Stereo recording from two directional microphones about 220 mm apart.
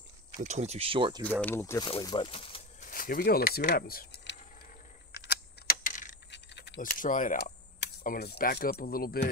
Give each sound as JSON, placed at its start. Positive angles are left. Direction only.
{"t": 0.4, "sound": "speech", "side_deg": -30}
{"t": 1.2, "sound": "speech", "side_deg": 10}
{"t": 2.9, "sound": "speech", "side_deg": 40}
{"t": 5.2, "sound": "keys jangling", "side_deg": 45}
{"t": 6.3, "sound": "keys jangling", "side_deg": 50}
{"t": 7.8, "sound": "speech", "side_deg": 40}